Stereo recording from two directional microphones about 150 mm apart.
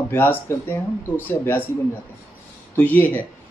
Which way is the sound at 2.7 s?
10° left (ahead or behind).